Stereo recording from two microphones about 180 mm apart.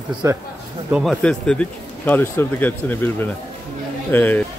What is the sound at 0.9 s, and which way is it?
Speech, centre (ahead or behind).